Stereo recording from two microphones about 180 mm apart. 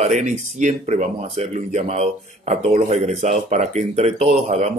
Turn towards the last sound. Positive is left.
turn(degrees=-40)  # may be behind; listen again after turning